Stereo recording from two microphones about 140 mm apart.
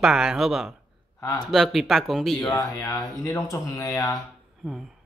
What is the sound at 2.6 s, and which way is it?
Speech, 20° left (ahead or behind).